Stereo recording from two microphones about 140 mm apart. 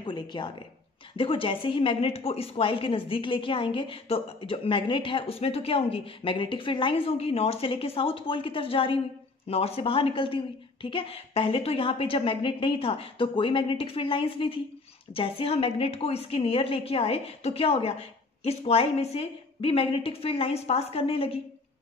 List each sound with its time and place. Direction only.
0.0 s a woman's voice: 35° left (ahead or behind)